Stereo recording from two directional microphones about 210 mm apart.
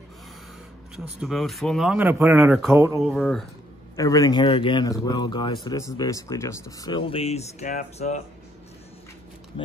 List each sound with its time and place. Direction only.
0.9 s speech: centre (ahead or behind)
3.0 s speech: 5° left (ahead or behind)
3.9 s speech: 15° left (ahead or behind); by 8.2 s 35° left (ahead or behind)